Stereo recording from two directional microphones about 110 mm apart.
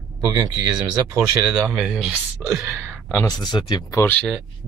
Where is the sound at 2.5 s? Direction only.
20° right (ahead or behind).